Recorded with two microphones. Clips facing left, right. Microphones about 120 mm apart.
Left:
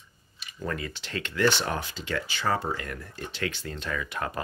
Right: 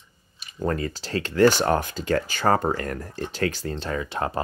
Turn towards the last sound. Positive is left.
turn(degrees=-30)  # may be behind; listen again after turning